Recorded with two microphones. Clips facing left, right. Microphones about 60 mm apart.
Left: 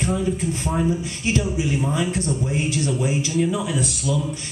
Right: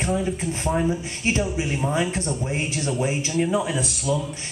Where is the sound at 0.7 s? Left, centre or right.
Centre.